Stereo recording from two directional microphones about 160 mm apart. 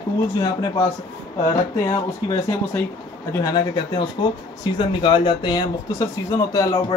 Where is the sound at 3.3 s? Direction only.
20° left (ahead or behind).